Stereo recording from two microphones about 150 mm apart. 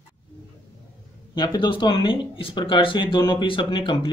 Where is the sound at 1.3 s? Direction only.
30° left (ahead or behind).